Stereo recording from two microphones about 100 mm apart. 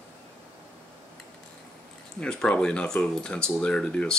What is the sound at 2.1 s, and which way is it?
Speech, 10° left (ahead or behind).